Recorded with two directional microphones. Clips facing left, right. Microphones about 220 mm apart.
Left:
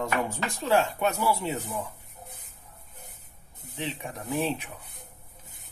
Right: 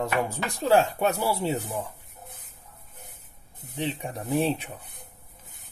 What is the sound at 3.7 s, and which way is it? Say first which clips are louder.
Speech: right 4 dB; 35° right (ahead or behind).